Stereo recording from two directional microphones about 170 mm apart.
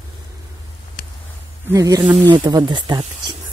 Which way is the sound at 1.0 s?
55° left (ahead or behind).